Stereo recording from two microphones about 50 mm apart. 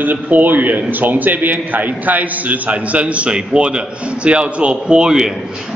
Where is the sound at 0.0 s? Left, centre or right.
Right.